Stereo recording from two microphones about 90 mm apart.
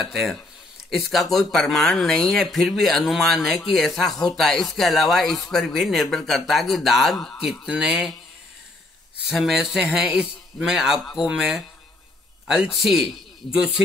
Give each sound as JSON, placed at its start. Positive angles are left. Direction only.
{"t": 0.0, "sound": "speech", "side_deg": 0}
{"t": 7.6, "sound": "speech", "side_deg": -10}
{"t": 9.3, "sound": "speech", "side_deg": 0}